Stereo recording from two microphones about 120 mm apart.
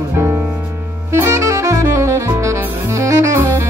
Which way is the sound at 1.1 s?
25° right (ahead or behind).